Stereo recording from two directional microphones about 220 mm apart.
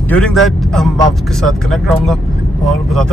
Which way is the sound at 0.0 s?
5° left (ahead or behind).